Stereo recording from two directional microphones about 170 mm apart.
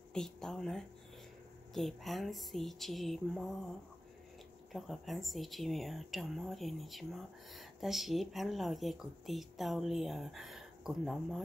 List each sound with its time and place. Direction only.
0.1 s speech: 5° left (ahead or behind)
4.7 s speech: centre (ahead or behind)